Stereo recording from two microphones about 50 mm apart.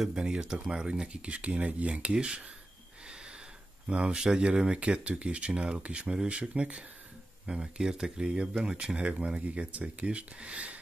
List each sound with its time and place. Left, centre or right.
0.1 s speech: centre
3.8 s speech: right